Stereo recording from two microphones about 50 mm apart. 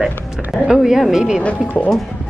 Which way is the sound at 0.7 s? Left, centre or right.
Centre.